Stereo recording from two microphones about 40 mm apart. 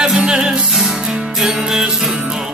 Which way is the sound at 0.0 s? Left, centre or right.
Centre.